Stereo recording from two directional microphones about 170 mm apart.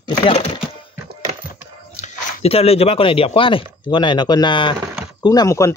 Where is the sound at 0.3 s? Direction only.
35° left (ahead or behind).